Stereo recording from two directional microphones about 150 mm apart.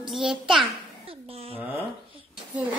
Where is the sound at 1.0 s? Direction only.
40° right (ahead or behind).